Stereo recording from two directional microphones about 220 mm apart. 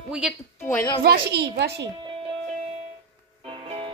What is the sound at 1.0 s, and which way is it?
Speech, 45° right (ahead or behind).